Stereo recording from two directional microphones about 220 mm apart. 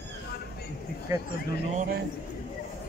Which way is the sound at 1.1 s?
15° right (ahead or behind).